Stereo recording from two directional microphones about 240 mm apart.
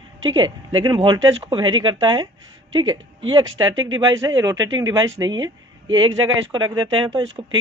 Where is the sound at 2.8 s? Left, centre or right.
Right.